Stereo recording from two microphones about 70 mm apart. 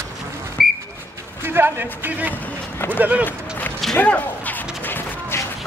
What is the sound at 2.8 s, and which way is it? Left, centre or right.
Speech, right.